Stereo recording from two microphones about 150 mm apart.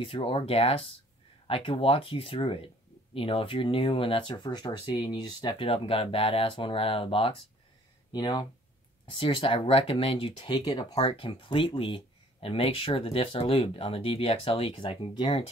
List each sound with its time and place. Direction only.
0.0 s speech: 35° left (ahead or behind)